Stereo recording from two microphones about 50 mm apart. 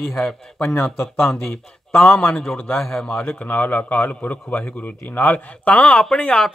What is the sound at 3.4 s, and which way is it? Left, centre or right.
A man's voice, left.